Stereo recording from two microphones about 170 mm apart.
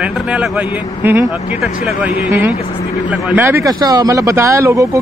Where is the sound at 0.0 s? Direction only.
5° right (ahead or behind).